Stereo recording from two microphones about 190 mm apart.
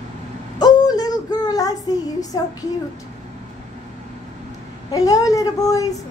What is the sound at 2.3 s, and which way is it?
Owl, 20° left (ahead or behind).